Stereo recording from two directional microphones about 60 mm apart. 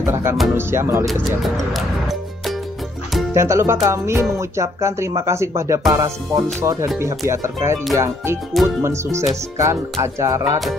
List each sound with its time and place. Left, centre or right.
0.0 s music: right
0.6 s speech: right
1.0 s speech: centre
3.3 s speech: right
5.9 s speech: right
7.0 s speech: right
7.9 s music: right